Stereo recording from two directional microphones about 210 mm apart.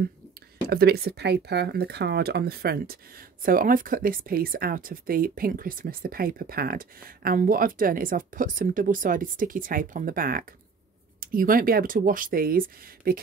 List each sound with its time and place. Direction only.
0.7 s speech: 50° right (ahead or behind)